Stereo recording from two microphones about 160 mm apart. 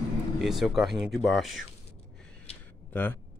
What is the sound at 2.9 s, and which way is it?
Speech, 10° left (ahead or behind).